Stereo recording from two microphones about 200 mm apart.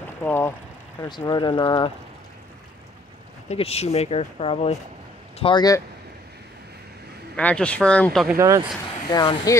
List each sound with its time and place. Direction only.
0.2 s speech: 10° left (ahead or behind)
3.4 s speech: 30° left (ahead or behind)
7.3 s speech: 5° left (ahead or behind)
8.4 s speech: 15° right (ahead or behind)
9.1 s speech: 20° left (ahead or behind)